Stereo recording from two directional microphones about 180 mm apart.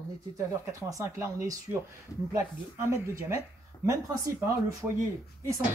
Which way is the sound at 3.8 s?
20° right (ahead or behind).